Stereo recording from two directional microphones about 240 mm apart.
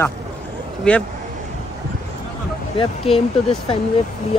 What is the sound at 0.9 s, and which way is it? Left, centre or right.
Speech, centre.